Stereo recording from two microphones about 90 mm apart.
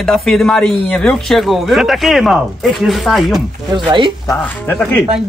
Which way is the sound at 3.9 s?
60° right (ahead or behind).